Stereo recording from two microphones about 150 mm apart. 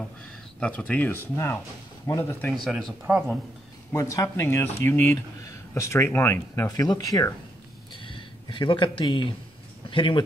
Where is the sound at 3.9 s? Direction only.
20° left (ahead or behind).